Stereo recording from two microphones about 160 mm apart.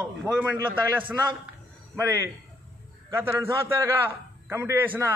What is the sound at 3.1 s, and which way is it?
A man's voice, 15° right (ahead or behind).